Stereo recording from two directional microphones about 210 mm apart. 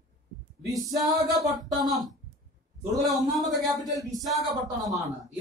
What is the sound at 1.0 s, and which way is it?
Speech, centre (ahead or behind).